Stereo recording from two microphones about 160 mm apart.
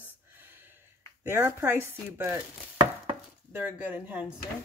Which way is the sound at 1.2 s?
15° right (ahead or behind).